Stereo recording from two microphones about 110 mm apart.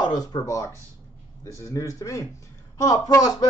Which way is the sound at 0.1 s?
40° left (ahead or behind).